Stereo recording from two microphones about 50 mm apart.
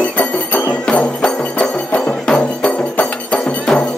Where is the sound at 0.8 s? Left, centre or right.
Left.